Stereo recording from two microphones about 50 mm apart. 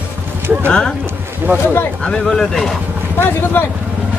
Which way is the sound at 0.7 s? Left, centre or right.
Centre.